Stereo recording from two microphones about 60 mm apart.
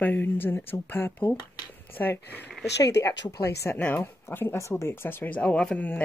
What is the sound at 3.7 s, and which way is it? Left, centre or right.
Speech, left.